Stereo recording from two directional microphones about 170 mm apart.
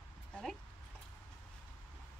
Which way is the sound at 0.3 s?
Centre (ahead or behind).